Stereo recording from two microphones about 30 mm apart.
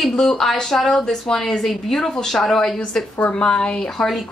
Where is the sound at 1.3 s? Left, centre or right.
Centre.